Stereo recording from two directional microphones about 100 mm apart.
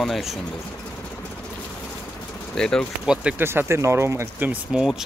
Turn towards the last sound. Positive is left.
turn(degrees=-5)  # may be behind; listen again after turning